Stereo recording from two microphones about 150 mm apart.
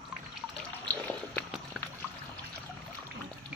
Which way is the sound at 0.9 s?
10° left (ahead or behind).